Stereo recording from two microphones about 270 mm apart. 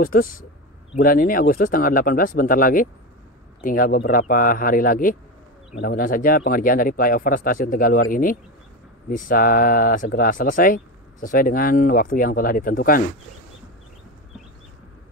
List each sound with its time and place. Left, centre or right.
0.0 s speech: left